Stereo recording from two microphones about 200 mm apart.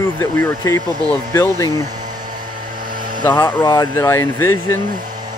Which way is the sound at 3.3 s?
10° left (ahead or behind).